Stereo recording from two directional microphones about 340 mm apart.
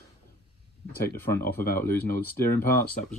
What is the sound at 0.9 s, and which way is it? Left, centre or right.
Speech, left.